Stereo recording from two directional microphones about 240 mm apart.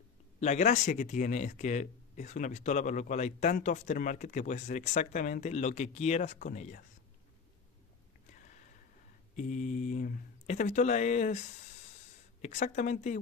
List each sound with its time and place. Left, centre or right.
0.4 s speech: left
9.4 s a woman's voice: left